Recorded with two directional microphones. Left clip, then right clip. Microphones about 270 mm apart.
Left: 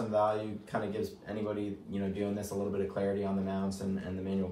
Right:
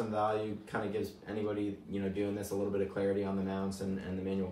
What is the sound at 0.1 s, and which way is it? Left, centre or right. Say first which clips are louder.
Speech: left 5 dB; centre.